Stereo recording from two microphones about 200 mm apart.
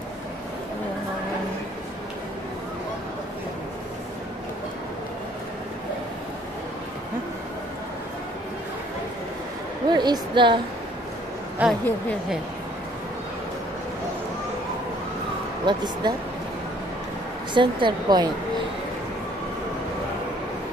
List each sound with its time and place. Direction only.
9.8 s a woman's voice: 20° right (ahead or behind)
11.6 s a woman's voice: 5° right (ahead or behind)
15.6 s a woman's voice: 20° right (ahead or behind)
17.6 s a woman's voice: 25° right (ahead or behind)